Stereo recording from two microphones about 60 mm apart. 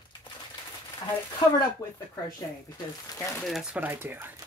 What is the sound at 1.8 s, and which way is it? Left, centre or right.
Speech, left.